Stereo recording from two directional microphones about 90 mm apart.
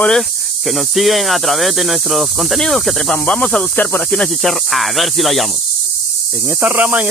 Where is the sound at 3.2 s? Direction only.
15° left (ahead or behind).